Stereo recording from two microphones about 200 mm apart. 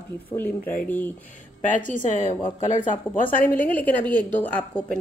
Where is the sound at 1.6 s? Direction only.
40° left (ahead or behind).